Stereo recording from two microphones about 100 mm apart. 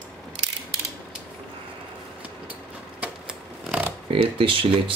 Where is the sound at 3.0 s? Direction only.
10° right (ahead or behind).